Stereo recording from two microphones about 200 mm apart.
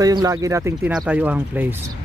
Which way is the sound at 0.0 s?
20° right (ahead or behind).